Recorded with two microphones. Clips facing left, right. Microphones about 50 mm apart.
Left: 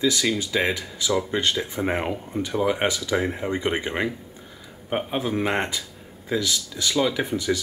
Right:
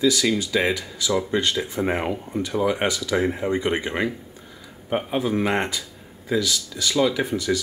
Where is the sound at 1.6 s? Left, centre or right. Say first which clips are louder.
Right 1 dB; centre.